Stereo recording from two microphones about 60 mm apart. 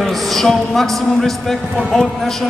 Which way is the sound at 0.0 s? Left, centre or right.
Centre.